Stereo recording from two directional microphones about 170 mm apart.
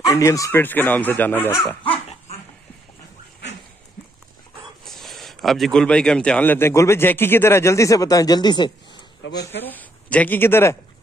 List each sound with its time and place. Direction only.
0.0 s speech: 20° left (ahead or behind)
1.9 s dog: 40° left (ahead or behind)
4.8 s speech: centre (ahead or behind); by 9.0 s 25° left (ahead or behind)
9.5 s speech: 10° left (ahead or behind)